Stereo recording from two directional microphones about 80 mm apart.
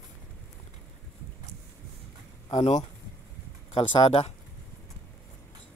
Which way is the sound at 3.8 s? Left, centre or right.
Left.